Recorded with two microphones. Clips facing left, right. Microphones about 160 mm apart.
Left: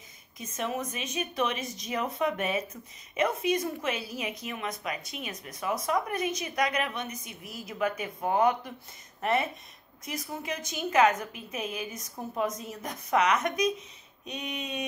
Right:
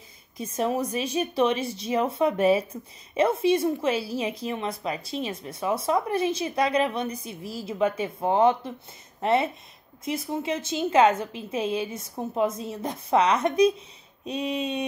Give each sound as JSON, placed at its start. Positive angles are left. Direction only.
{"t": 0.4, "sound": "speech", "side_deg": -35}